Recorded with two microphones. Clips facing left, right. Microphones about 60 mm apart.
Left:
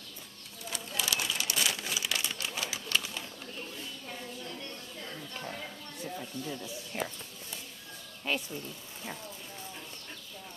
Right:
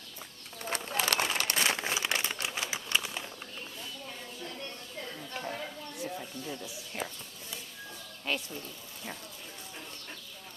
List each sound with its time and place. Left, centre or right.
0.6 s crumpling: right
2.5 s typewriter: right
5.4 s a sound: centre
6.9 s speech: centre
8.3 s speech: centre